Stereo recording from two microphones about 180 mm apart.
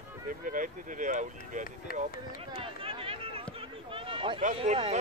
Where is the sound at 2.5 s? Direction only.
30° right (ahead or behind).